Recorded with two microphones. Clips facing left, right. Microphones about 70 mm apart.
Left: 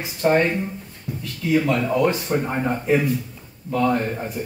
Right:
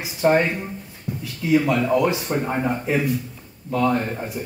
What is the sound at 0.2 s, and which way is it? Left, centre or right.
Speech, centre.